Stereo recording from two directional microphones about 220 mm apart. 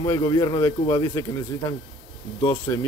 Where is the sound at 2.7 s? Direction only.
10° left (ahead or behind).